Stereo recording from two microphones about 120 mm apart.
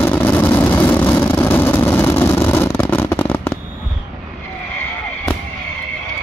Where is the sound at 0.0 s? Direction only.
20° left (ahead or behind).